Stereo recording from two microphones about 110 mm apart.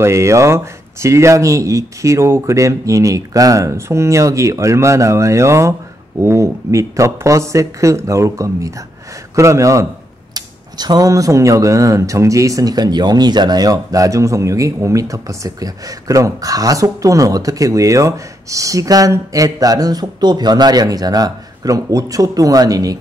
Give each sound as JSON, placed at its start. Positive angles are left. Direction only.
{"t": 0.0, "sound": "speech", "side_deg": -25}